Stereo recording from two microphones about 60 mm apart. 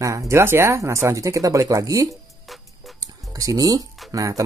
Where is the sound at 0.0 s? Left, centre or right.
Right.